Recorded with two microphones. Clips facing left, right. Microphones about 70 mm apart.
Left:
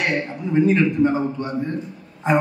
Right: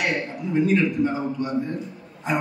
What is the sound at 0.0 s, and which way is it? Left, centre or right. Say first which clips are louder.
A man's voice: left 2 dB; left.